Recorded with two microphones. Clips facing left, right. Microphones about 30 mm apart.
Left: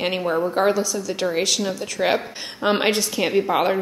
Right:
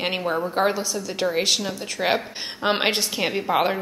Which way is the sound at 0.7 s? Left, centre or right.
Centre.